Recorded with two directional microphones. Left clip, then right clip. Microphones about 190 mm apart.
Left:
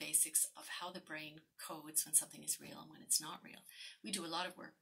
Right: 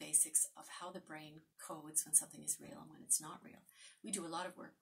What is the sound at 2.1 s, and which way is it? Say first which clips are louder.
A woman's voice: right 1 dB; 5° right (ahead or behind).